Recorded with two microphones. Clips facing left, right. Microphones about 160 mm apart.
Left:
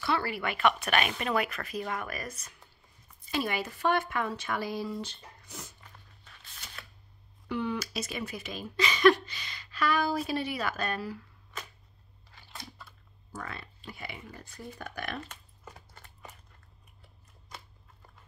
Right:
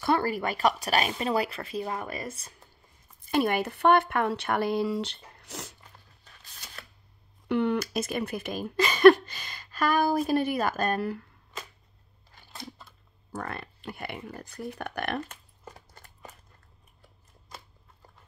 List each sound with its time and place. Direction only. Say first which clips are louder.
0.0 s speech: right 5 dB; 45° right (ahead or behind)
3.3 s speech: right 6 dB; 55° right (ahead or behind); by 5.8 s 80° right
6.2 s a sound: even; 35° right (ahead or behind)
7.4 s speech: right 6 dB; 65° right (ahead or behind)
13.3 s speech: right 5 dB; 55° right (ahead or behind)
15.6 s a sound: right 4 dB; 40° right (ahead or behind)